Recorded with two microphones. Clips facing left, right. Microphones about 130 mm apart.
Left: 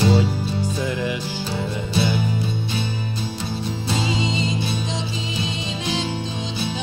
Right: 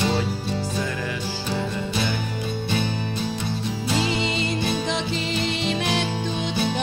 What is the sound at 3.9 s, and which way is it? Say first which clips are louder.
Music: even; 65° right (ahead or behind).